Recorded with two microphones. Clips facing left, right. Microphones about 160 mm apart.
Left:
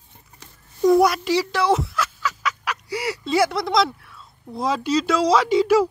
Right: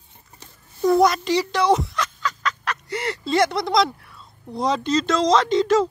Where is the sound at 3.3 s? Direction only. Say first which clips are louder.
Even; 5° left (ahead or behind).